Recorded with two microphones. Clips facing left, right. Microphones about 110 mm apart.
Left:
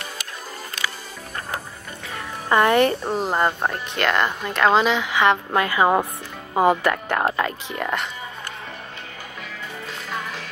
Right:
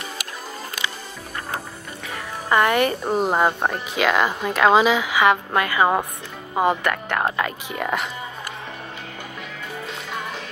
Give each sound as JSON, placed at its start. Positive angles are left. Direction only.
{"t": 2.7, "sound": "speech", "side_deg": -10}
{"t": 5.8, "sound": "speech", "side_deg": 10}
{"t": 6.5, "sound": "speech", "side_deg": 20}
{"t": 7.4, "sound": "speech", "side_deg": -5}